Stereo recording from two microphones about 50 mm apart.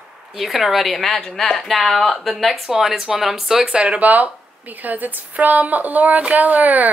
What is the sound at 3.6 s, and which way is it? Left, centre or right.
Speech, right.